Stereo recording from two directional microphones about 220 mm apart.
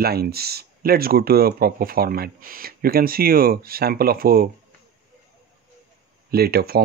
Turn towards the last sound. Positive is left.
turn(degrees=-45)  # may be behind; listen again after turning